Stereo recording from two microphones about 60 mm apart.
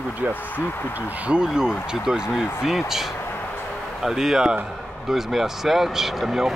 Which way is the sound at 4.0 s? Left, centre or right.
Centre.